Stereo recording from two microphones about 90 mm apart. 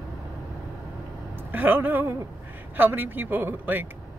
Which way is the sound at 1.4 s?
20° right (ahead or behind).